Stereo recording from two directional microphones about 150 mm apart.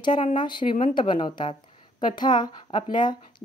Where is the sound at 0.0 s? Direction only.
35° left (ahead or behind).